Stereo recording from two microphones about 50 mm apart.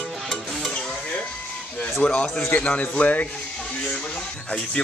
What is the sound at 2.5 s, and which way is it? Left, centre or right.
Speech, left.